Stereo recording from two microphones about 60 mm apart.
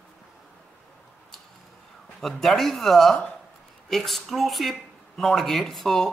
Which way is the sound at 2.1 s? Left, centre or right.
Centre.